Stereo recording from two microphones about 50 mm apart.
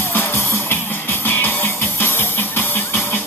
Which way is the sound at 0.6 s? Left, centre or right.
Left.